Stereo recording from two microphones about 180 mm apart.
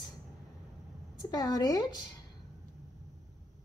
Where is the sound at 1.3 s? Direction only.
20° left (ahead or behind).